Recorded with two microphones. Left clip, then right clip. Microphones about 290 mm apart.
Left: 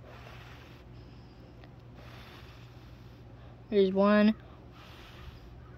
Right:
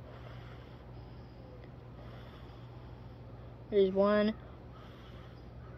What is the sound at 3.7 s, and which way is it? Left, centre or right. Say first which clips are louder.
Speech: left 2 dB; left.